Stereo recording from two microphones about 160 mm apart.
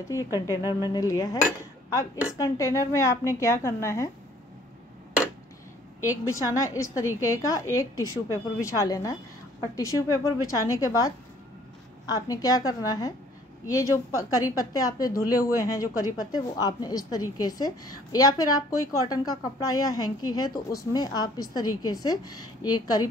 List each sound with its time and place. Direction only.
0.8 s a woman's voice: 25° left (ahead or behind)
6.0 s a woman's voice: 20° left (ahead or behind)